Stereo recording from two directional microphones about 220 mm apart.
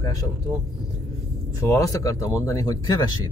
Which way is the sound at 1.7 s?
15° left (ahead or behind).